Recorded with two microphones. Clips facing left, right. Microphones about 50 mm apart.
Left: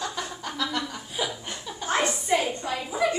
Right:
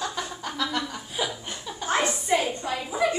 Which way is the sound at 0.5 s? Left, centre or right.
Right.